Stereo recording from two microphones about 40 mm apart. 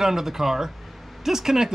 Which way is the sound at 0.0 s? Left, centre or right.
Centre.